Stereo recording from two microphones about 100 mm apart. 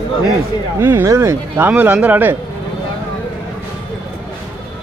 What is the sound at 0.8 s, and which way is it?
Speech, 25° right (ahead or behind).